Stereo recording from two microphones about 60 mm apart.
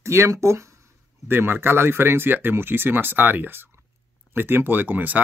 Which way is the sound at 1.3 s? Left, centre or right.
Right.